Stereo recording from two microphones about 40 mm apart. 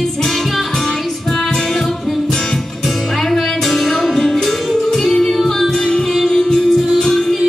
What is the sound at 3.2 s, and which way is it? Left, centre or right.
Music, centre.